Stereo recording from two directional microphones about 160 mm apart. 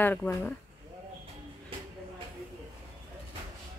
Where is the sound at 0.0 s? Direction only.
10° left (ahead or behind).